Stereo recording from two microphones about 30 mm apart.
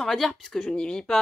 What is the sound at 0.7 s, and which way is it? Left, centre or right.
Speech, left.